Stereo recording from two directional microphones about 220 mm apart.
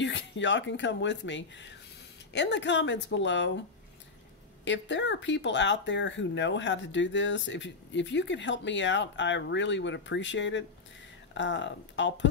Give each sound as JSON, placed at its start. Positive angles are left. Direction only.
{"t": 0.0, "sound": "speech", "side_deg": 55}
{"t": 4.6, "sound": "speech", "side_deg": 55}